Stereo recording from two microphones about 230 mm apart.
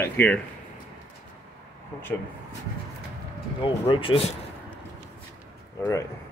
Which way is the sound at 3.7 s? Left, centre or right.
Left.